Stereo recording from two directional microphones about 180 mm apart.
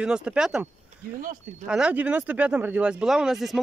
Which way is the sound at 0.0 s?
5° right (ahead or behind).